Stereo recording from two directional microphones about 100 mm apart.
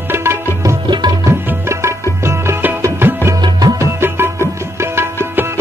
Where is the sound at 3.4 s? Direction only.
40° right (ahead or behind).